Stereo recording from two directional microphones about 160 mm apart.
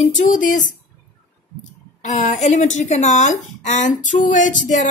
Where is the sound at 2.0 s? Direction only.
45° left (ahead or behind).